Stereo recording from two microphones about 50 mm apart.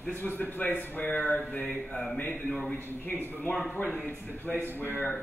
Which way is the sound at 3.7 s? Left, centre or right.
Left.